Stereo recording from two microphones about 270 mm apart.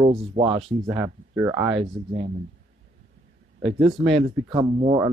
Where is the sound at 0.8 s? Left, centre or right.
Centre.